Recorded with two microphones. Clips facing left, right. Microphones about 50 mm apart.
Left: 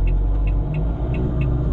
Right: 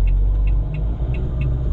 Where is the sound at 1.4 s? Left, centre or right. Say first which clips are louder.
Left 3 dB; left.